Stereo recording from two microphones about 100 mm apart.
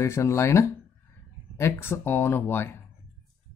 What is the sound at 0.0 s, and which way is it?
Speech, 30° left (ahead or behind).